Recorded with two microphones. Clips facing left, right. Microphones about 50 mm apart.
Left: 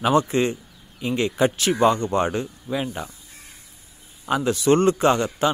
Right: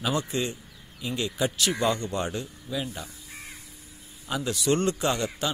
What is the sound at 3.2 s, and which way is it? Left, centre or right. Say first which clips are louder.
Crow: right 4 dB; right.